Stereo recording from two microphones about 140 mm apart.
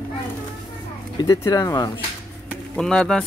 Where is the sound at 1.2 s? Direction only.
25° left (ahead or behind).